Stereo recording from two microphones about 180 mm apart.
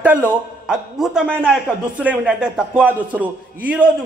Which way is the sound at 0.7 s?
5° right (ahead or behind).